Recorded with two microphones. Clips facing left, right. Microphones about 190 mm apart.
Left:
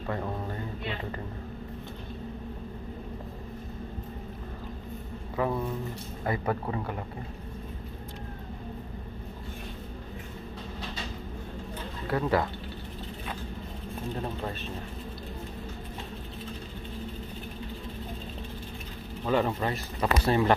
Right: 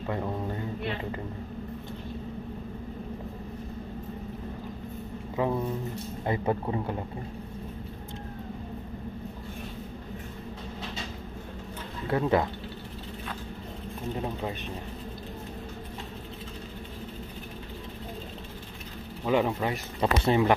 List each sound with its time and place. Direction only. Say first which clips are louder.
5.3 s a man's voice: right 1 dB; 20° right (ahead or behind)
12.1 s a man's voice: right 2 dB; 20° right (ahead or behind)
14.1 s speech: right 2 dB; 10° right (ahead or behind)
19.2 s a man's voice: right 1 dB; 10° right (ahead or behind)